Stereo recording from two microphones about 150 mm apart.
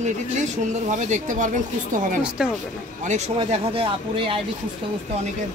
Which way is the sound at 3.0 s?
55° right (ahead or behind).